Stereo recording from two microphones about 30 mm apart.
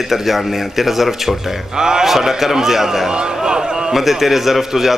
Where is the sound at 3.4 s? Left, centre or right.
Right.